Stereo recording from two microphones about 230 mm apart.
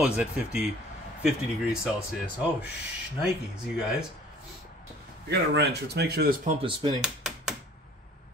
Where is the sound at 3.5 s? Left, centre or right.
Centre.